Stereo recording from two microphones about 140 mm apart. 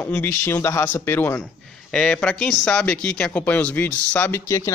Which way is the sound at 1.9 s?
5° left (ahead or behind).